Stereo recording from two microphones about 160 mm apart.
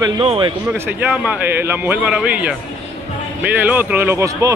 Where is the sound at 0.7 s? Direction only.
10° right (ahead or behind).